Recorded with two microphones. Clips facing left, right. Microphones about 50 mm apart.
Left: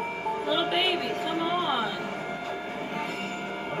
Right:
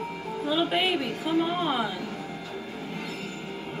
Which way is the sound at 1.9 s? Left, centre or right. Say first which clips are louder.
Left 2 dB; left.